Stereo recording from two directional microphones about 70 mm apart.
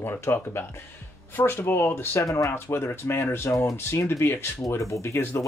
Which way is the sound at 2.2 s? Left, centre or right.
Left.